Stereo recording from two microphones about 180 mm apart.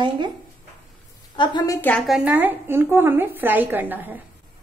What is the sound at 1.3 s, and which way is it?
Speech, 25° left (ahead or behind).